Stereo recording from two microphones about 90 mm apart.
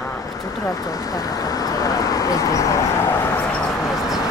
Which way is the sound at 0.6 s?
40° left (ahead or behind).